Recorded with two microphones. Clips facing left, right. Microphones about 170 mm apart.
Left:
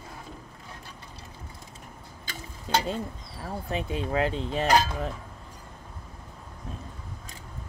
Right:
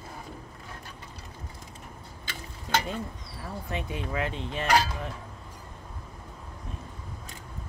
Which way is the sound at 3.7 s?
30° left (ahead or behind).